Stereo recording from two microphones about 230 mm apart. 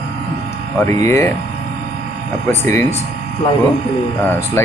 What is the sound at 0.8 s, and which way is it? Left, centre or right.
Speech, centre.